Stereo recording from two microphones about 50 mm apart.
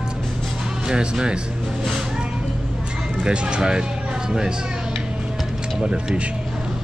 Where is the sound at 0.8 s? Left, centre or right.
Centre.